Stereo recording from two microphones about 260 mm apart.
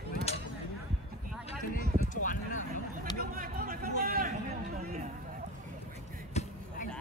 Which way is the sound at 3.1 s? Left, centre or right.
Right.